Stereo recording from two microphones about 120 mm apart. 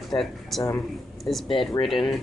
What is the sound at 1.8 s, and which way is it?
Speech, 35° left (ahead or behind).